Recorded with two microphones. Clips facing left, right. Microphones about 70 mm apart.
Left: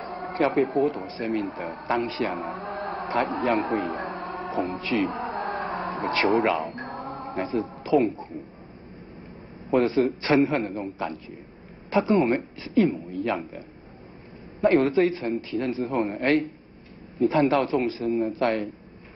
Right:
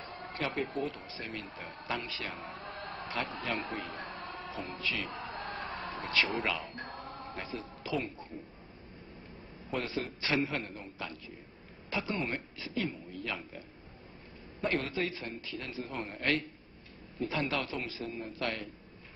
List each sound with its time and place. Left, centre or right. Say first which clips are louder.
0.0 s a man's voice: left 12 dB; left
4.6 s a sound: left 13 dB; left
6.3 s speech: left 12 dB; left
7.0 s music: left 11 dB; left
7.4 s speech: left 12 dB; left
9.7 s a man's voice: left 14 dB; left
12.5 s a woman's voice: left 15 dB; left
12.9 s a man's voice: left 12 dB; left
14.7 s a man's voice: left 14 dB; left